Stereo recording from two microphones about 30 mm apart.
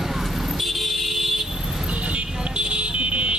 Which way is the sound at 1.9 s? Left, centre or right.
Right.